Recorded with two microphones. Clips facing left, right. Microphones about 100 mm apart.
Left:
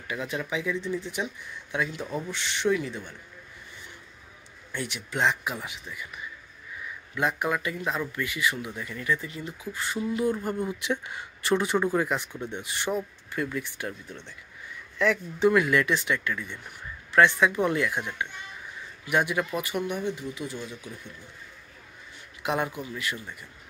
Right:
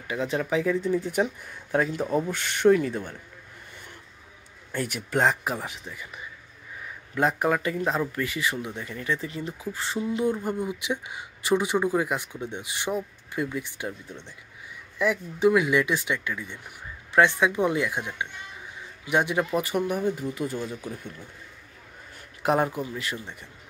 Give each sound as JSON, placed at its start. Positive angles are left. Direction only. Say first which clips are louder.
{"t": 0.1, "sound": "speech", "louder": "right 4 dB", "side_deg": -30}
{"t": 0.4, "sound": "speech", "louder": "right 7 dB", "side_deg": -40}
{"t": 4.7, "sound": "speech", "louder": "right 4 dB", "side_deg": -45}
{"t": 10.3, "sound": "speech", "louder": "right 1 dB", "side_deg": -15}
{"t": 22.4, "sound": "speech", "louder": "right 5 dB", "side_deg": -40}